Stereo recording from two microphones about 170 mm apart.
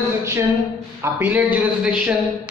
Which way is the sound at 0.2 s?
15° right (ahead or behind).